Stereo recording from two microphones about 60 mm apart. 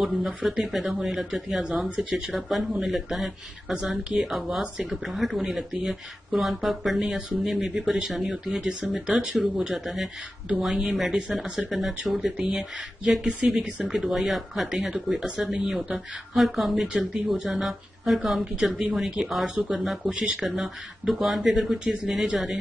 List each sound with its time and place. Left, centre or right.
0.0 s speech: centre